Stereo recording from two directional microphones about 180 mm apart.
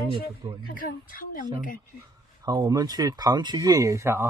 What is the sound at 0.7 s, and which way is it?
Speech, 50° left (ahead or behind).